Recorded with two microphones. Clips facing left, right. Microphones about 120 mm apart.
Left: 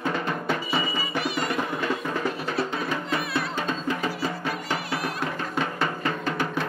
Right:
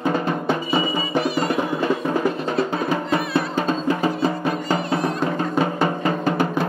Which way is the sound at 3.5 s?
35° right (ahead or behind).